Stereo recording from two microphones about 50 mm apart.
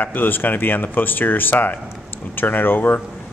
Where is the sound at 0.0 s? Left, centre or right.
Left.